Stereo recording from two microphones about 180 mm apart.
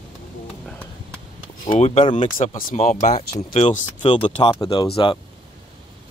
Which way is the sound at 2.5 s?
50° left (ahead or behind).